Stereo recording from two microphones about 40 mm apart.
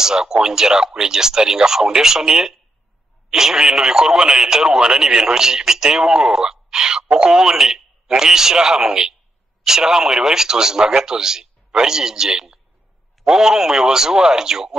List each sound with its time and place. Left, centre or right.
0.0 s speech: centre